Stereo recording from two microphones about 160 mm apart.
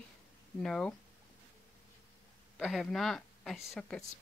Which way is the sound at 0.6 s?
5° left (ahead or behind).